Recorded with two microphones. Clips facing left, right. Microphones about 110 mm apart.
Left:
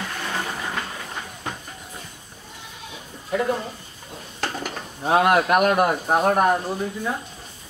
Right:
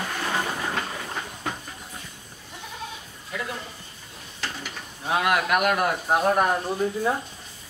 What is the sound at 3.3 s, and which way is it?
Speech, 40° left (ahead or behind).